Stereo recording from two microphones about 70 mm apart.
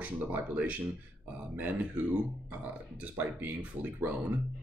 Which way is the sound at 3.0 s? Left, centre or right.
Right.